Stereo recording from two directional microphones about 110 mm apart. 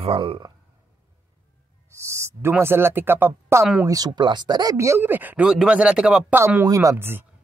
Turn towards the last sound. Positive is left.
turn(degrees=-20)  # may be behind; listen again after turning